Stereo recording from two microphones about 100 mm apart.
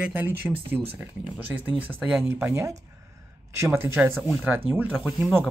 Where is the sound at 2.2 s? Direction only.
25° right (ahead or behind).